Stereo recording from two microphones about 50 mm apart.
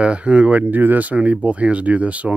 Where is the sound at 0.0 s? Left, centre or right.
Right.